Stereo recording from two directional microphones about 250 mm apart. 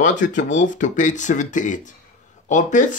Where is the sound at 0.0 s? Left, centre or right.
Left.